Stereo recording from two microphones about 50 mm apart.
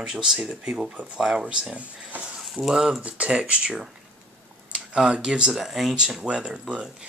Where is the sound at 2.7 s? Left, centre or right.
Centre.